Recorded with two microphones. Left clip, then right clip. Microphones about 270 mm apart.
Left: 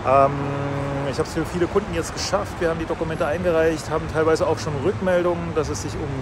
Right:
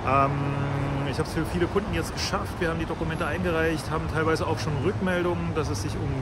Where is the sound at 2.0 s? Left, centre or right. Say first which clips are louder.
Left 5 dB; centre.